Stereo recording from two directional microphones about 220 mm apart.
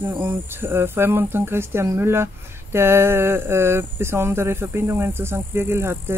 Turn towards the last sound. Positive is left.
turn(degrees=-10)  # may be behind; listen again after turning